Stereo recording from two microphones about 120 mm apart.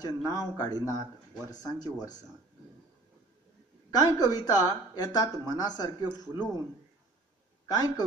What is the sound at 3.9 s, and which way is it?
A woman's voice, 30° left (ahead or behind).